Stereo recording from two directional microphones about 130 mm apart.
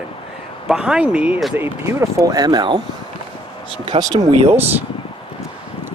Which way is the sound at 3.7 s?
45° right (ahead or behind).